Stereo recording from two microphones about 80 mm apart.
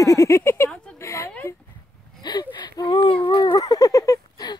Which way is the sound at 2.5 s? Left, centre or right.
Left.